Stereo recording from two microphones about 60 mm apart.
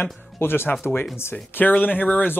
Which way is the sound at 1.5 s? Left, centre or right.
Left.